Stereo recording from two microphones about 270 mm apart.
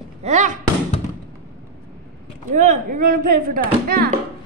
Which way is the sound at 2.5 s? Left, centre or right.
Right.